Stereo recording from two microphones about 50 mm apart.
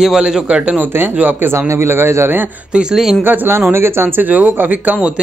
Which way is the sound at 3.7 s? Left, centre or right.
Right.